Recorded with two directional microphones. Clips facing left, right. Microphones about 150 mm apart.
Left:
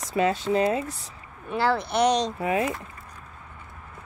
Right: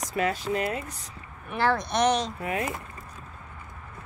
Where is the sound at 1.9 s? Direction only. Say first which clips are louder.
Left 2 dB; 15° left (ahead or behind).